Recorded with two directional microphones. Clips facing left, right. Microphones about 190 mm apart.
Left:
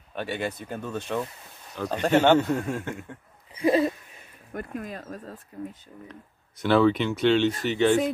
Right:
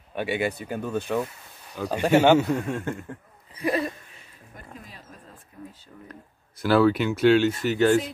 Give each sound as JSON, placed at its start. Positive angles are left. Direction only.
{"t": 0.1, "sound": "speech", "side_deg": -10}
{"t": 2.6, "sound": "speech", "side_deg": 0}
{"t": 3.6, "sound": "a sound", "side_deg": 20}
{"t": 4.6, "sound": "speech", "side_deg": 55}
{"t": 5.5, "sound": "speech", "side_deg": 30}
{"t": 6.6, "sound": "speech", "side_deg": -5}